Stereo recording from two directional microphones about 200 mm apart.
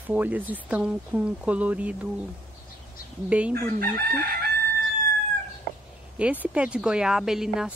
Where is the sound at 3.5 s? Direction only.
45° right (ahead or behind).